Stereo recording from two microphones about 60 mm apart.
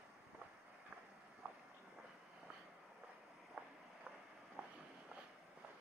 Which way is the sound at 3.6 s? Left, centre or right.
Right.